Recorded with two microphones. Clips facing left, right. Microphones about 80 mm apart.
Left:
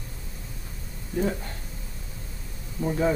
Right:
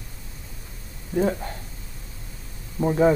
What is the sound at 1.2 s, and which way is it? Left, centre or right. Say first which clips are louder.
Speech: right 4 dB; right.